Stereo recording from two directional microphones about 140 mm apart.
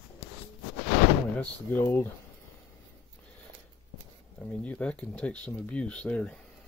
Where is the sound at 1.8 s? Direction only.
15° left (ahead or behind).